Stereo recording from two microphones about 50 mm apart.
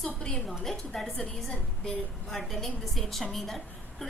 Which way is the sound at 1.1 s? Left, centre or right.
Centre.